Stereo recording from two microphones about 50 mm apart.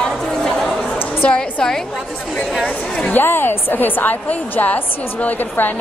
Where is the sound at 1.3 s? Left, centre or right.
Left.